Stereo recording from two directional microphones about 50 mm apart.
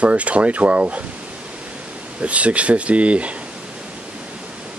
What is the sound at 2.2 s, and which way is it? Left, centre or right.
Speech, right.